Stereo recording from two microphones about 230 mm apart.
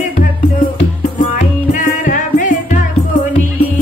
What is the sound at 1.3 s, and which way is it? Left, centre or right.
Music, left.